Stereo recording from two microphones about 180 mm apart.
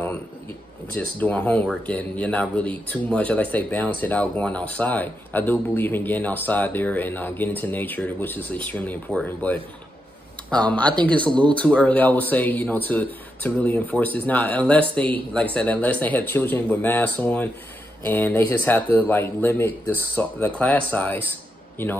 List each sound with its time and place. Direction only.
0.9 s speech: 10° left (ahead or behind)
11.2 s speech: 25° right (ahead or behind)
11.5 s speech: 5° left (ahead or behind)